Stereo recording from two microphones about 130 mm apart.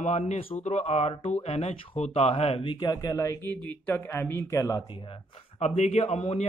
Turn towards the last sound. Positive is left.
turn(degrees=55)  # may be behind; listen again after turning